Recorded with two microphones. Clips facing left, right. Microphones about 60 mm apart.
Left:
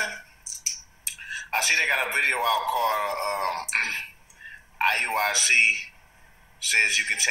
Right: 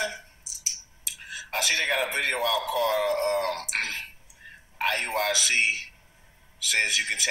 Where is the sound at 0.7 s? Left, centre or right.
Left.